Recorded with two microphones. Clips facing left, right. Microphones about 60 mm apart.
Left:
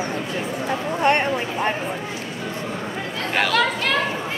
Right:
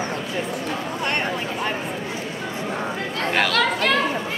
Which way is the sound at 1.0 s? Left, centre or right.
Left.